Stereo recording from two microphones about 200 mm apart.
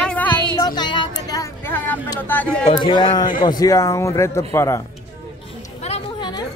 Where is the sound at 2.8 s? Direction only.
25° left (ahead or behind).